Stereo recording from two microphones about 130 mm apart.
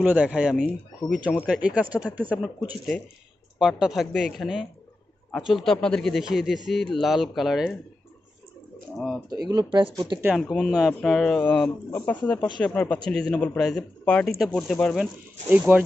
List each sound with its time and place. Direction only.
0.0 s a man's voice: 10° right (ahead or behind)
3.5 s a man's voice: 5° right (ahead or behind)
8.9 s a man's voice: 5° left (ahead or behind)
9.3 s speech: 30° right (ahead or behind)
10.2 s a man's voice: centre (ahead or behind)
15.5 s speech: 10° right (ahead or behind)